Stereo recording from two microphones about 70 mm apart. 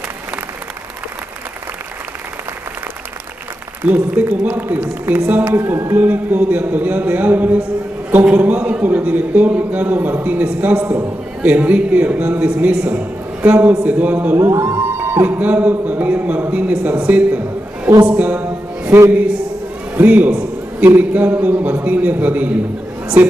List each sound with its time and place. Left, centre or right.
3.8 s a man's voice: right
15.2 s a man's voice: right
18.0 s a sound: right
18.4 s music: right
20.0 s a sound: right
20.9 s a man's voice: right